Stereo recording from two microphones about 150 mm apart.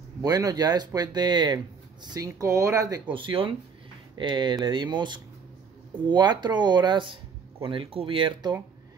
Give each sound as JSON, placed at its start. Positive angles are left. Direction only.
{"t": 0.2, "sound": "speech", "side_deg": -25}